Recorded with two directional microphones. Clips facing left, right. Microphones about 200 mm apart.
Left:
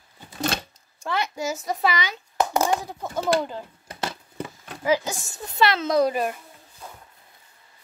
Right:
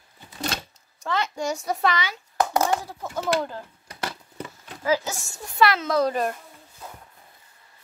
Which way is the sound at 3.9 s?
25° left (ahead or behind).